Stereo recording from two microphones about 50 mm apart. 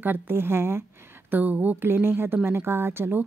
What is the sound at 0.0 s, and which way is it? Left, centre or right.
Speech, right.